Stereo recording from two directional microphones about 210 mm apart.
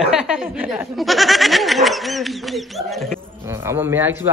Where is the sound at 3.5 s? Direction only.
10° right (ahead or behind).